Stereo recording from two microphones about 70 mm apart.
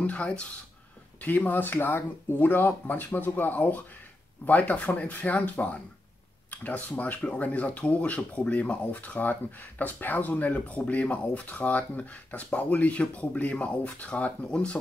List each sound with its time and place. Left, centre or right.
0.0 s speech: centre